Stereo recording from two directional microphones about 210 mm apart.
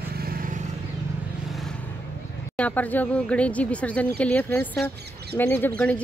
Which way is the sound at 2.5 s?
5° left (ahead or behind).